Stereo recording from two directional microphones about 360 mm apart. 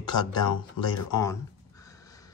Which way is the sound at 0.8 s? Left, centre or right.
Left.